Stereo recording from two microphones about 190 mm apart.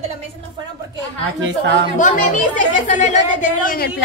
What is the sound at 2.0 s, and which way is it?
A woman's voice, 40° left (ahead or behind).